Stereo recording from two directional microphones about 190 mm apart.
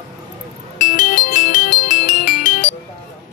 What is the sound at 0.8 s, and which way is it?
Music, 45° left (ahead or behind).